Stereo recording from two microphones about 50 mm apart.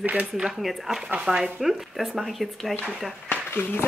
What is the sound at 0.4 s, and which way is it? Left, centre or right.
Speech, centre.